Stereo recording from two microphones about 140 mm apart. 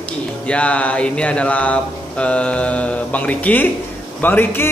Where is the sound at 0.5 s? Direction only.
10° left (ahead or behind).